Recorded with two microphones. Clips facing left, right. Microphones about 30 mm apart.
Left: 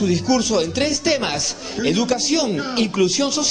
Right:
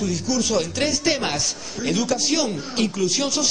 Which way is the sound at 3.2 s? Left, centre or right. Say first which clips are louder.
Left 4 dB; centre.